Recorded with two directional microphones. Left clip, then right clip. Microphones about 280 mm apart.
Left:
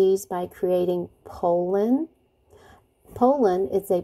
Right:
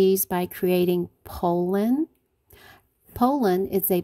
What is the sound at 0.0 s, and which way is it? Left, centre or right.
A woman's voice, right.